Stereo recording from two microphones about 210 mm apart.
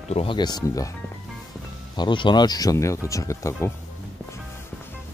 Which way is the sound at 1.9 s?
20° left (ahead or behind).